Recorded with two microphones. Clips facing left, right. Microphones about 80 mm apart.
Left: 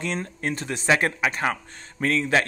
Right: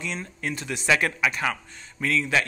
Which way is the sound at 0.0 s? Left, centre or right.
Left.